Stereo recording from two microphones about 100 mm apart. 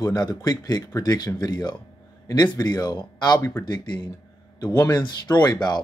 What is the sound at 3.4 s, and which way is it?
Speech, 25° left (ahead or behind).